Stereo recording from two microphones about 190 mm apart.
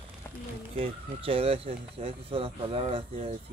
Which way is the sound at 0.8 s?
30° right (ahead or behind).